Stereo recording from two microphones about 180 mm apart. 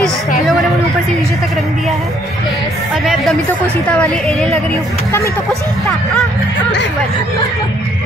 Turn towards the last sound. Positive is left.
turn(degrees=5)  # may be behind; listen again after turning